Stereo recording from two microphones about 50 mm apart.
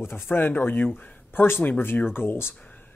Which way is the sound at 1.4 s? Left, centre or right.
Left.